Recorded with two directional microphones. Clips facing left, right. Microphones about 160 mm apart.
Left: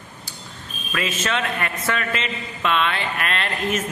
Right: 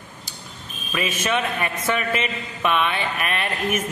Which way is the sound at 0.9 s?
15° right (ahead or behind).